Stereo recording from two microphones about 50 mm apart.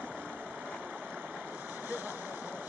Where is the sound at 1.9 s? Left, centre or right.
Right.